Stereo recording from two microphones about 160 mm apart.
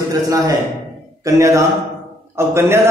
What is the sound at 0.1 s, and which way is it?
A man's voice, 20° right (ahead or behind).